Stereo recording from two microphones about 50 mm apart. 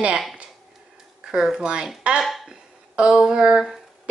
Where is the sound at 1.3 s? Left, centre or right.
Centre.